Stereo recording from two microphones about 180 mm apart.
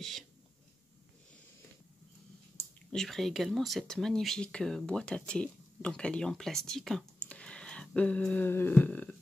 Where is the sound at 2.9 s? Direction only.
Centre (ahead or behind).